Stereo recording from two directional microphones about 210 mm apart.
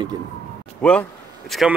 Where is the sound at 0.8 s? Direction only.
5° left (ahead or behind).